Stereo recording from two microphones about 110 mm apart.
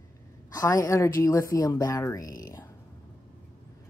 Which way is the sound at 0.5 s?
30° left (ahead or behind).